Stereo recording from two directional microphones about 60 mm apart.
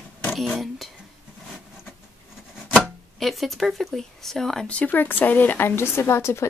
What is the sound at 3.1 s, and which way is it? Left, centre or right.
Speech, centre.